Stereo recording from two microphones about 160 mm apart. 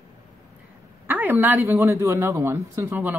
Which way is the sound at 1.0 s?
10° right (ahead or behind).